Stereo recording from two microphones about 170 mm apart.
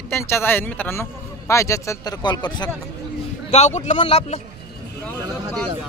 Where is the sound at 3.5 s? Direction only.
45° left (ahead or behind).